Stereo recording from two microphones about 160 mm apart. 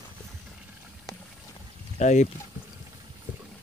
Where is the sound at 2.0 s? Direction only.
50° left (ahead or behind).